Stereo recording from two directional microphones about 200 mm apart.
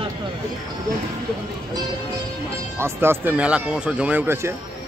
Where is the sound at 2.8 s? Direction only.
10° right (ahead or behind).